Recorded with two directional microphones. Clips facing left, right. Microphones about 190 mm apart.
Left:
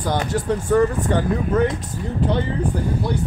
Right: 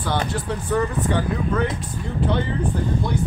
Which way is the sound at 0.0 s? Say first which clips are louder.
Left 2 dB; 45° left (ahead or behind).